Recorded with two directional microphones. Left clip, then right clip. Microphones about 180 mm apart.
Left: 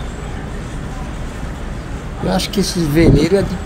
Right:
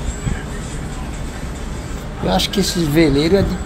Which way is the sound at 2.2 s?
Centre (ahead or behind).